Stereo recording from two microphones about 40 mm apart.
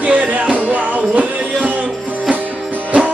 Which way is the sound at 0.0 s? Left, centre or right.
Right.